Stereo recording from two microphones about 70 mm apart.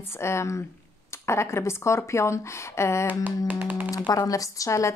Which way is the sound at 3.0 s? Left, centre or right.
Right.